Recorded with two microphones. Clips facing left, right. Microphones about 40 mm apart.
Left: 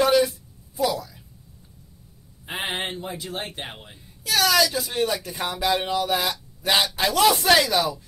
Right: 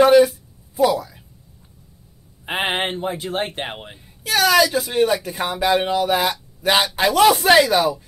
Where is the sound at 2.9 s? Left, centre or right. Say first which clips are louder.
Right 7 dB; right.